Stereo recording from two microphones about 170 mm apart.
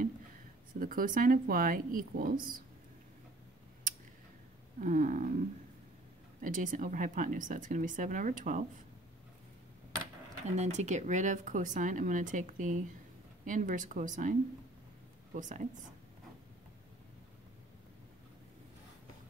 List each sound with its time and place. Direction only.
0.7 s speech: 55° right (ahead or behind)
4.7 s speech: 50° right (ahead or behind)
6.4 s speech: 50° right (ahead or behind)
10.5 s speech: 40° right (ahead or behind)
15.3 s speech: 50° right (ahead or behind)